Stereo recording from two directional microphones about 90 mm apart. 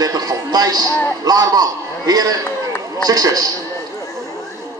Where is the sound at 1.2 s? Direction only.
45° right (ahead or behind).